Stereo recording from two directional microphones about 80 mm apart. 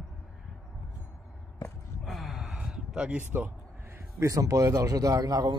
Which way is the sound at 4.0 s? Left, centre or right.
Right.